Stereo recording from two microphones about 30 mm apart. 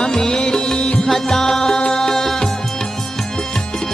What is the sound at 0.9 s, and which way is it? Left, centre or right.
Music, centre.